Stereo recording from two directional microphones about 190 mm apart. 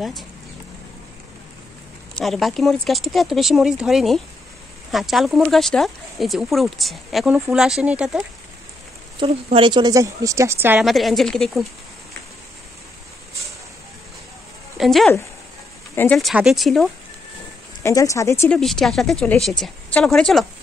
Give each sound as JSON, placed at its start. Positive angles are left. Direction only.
{"t": 2.1, "sound": "speech", "side_deg": 0}
{"t": 9.2, "sound": "speech", "side_deg": -25}
{"t": 10.9, "sound": "speech", "side_deg": 0}
{"t": 14.8, "sound": "speech", "side_deg": 0}
{"t": 15.9, "sound": "speech", "side_deg": 10}
{"t": 16.2, "sound": "speech", "side_deg": 0}
{"t": 17.8, "sound": "speech", "side_deg": 15}
{"t": 18.6, "sound": "speech", "side_deg": 0}